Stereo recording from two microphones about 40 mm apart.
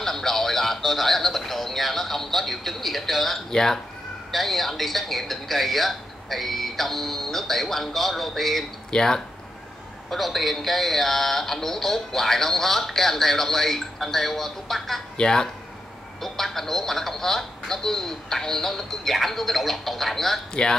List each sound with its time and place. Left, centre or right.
0.0 s speech: centre
8.9 s speech: centre
10.1 s speech: centre
15.1 s speech: centre
20.6 s speech: left